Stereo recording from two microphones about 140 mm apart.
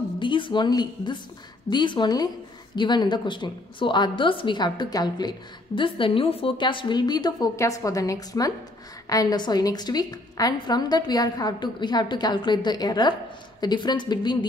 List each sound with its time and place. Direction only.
0.2 s a woman's voice: 35° left (ahead or behind)